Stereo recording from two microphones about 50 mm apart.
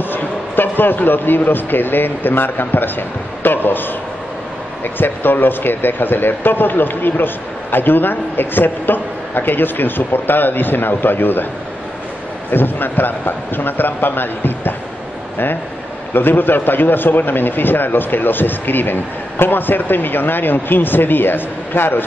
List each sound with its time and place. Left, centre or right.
0.1 s a man's voice: left
12.4 s a man's voice: left
16.1 s a man's voice: left